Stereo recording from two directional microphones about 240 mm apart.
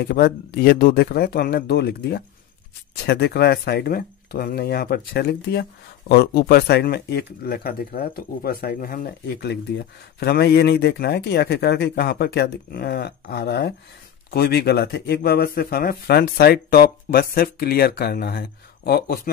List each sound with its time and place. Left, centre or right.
0.0 s speech: left